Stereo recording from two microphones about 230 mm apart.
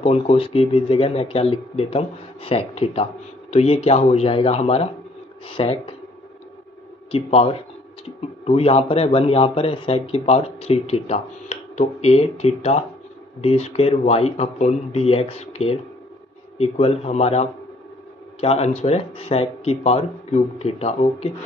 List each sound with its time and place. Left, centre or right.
0.0 s a man's voice: left
7.1 s a man's voice: left